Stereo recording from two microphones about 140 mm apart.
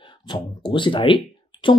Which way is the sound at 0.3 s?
35° left (ahead or behind).